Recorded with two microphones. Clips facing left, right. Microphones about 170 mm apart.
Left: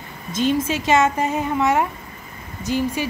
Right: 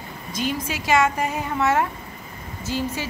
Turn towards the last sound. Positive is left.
turn(degrees=15)  # may be behind; listen again after turning